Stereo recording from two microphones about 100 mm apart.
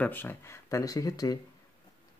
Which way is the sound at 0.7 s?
35° left (ahead or behind).